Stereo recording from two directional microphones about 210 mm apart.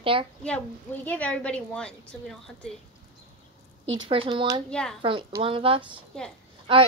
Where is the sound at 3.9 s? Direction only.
25° right (ahead or behind).